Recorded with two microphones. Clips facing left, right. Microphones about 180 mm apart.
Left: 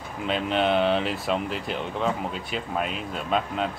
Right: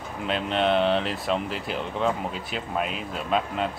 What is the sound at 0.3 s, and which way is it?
Speech, centre (ahead or behind).